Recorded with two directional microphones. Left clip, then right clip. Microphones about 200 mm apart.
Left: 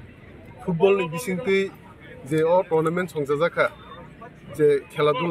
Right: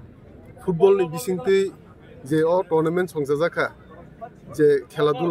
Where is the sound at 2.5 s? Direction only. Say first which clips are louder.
Even; 30° right (ahead or behind).